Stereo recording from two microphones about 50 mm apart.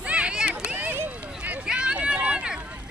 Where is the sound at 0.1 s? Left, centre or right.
Right.